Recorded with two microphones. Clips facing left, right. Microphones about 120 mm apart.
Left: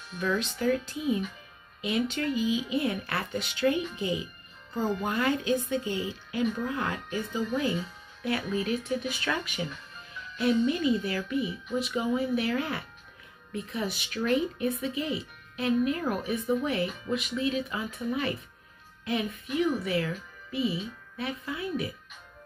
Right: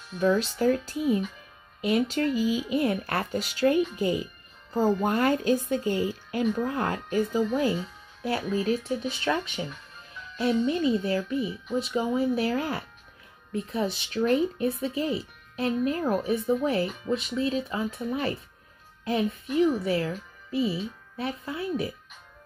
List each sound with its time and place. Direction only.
0.2 s speech: 35° right (ahead or behind)